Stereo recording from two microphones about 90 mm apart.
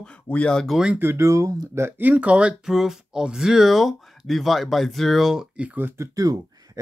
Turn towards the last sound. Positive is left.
turn(degrees=-40)  # may be behind; listen again after turning